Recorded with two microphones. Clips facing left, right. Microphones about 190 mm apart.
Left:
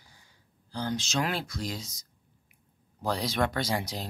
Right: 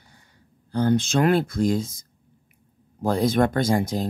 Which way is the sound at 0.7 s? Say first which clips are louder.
Right 10 dB; 55° right (ahead or behind).